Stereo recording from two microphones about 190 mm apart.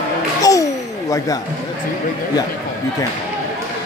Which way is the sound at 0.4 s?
20° left (ahead or behind).